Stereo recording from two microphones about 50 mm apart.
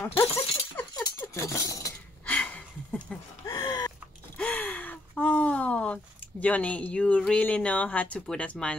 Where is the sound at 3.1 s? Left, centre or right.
Centre.